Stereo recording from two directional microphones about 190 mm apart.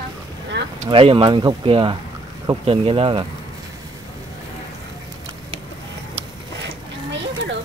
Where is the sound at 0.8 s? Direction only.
25° right (ahead or behind).